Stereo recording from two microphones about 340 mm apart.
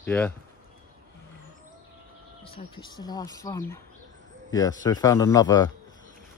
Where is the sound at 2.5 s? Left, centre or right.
Centre.